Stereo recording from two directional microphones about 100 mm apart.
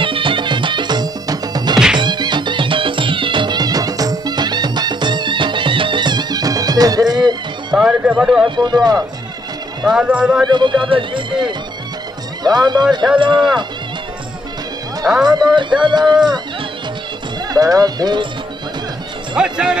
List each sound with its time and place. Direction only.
0.0 s music: 60° right (ahead or behind); by 7.2 s 40° right (ahead or behind)
7.7 s speech: 10° right (ahead or behind)
8.5 s music: 45° right (ahead or behind)
9.8 s speech: 10° right (ahead or behind)
10.5 s speech: 50° right (ahead or behind)
12.4 s music: 45° right (ahead or behind)
13.3 s speech: 5° right (ahead or behind)
15.0 s speech: 5° right (ahead or behind)
15.3 s music: 50° right (ahead or behind)
17.5 s speech: 40° right (ahead or behind)
19.3 s speech: 10° right (ahead or behind)